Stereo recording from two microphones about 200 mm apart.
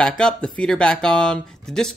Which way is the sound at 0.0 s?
5° left (ahead or behind).